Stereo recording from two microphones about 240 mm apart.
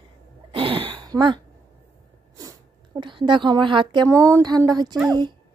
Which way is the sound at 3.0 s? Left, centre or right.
Centre.